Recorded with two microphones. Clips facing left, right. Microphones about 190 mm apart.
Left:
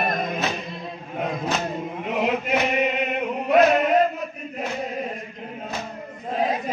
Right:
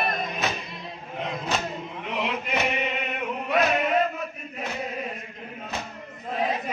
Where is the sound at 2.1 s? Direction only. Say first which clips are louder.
Left 6 dB; 45° left (ahead or behind).